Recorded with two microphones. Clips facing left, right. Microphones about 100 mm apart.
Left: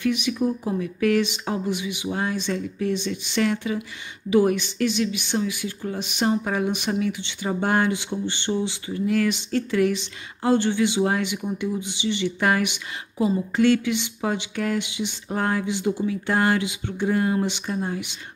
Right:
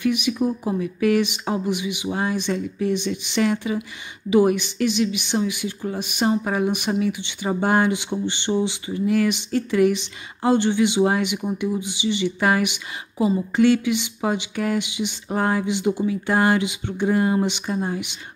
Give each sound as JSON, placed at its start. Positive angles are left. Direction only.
{"t": 0.0, "sound": "speech", "side_deg": -10}